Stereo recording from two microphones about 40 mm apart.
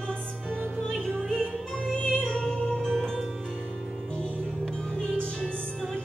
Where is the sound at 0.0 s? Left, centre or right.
Left.